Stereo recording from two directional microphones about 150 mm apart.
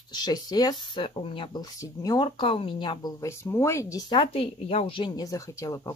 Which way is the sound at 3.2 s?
20° left (ahead or behind).